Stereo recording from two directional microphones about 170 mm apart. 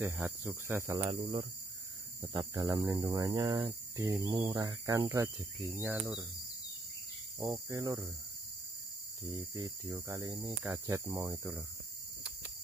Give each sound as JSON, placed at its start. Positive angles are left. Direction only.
{"t": 0.0, "sound": "speech", "side_deg": -15}
{"t": 0.9, "sound": "speech", "side_deg": -30}
{"t": 7.5, "sound": "speech", "side_deg": -20}
{"t": 9.9, "sound": "speech", "side_deg": -20}